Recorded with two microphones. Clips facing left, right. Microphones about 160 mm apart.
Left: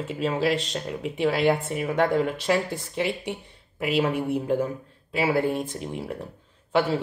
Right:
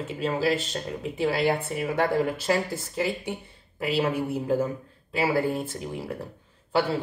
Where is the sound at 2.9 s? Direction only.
70° left (ahead or behind).